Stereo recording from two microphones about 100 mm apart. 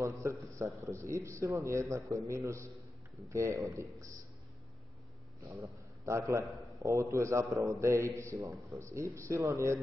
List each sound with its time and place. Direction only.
0.0 s a man's voice: 30° right (ahead or behind)
6.0 s a man's voice: 30° right (ahead or behind)